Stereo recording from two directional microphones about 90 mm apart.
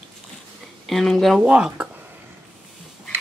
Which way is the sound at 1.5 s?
10° right (ahead or behind).